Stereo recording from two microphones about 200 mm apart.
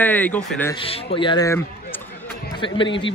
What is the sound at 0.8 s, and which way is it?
Speech, 30° left (ahead or behind).